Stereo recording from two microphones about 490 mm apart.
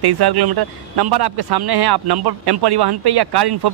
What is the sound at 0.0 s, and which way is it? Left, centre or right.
Speech, right.